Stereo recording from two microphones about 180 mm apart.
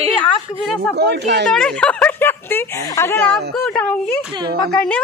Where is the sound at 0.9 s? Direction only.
70° right (ahead or behind).